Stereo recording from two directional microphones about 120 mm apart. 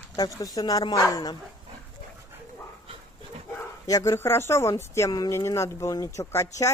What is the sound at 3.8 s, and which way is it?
Speech, 25° left (ahead or behind).